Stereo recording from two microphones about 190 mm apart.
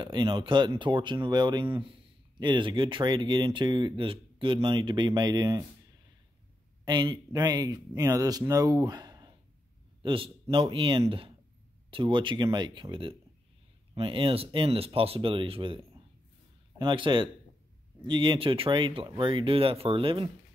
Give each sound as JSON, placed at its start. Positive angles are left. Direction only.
{"t": 0.0, "sound": "speech", "side_deg": -25}
{"t": 6.8, "sound": "speech", "side_deg": -20}